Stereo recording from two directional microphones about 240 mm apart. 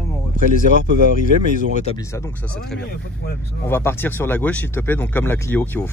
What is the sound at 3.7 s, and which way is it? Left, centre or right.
Speech, centre.